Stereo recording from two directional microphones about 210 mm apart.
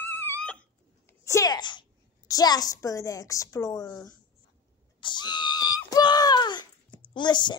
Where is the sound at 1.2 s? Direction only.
15° left (ahead or behind).